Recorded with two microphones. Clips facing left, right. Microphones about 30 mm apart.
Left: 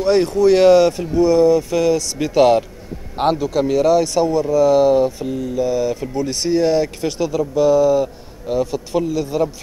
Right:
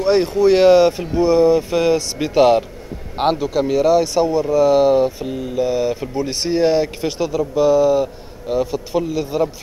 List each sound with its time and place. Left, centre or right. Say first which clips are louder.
0.0 s speech: even; centre
2.1 s speech: even; centre